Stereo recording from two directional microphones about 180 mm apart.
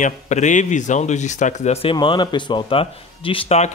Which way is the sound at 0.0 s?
40° left (ahead or behind).